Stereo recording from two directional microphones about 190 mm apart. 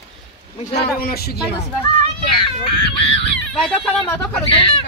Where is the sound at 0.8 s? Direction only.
55° left (ahead or behind).